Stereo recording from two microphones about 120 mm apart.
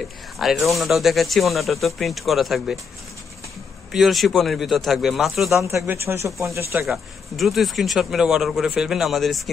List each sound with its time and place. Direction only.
0.4 s speech: centre (ahead or behind)
3.9 s speech: centre (ahead or behind)
5.7 s speech: 20° right (ahead or behind)
6.9 s speech: centre (ahead or behind)